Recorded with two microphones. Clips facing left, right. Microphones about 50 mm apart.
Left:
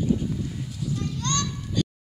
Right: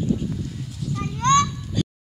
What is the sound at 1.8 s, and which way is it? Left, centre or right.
Music, centre.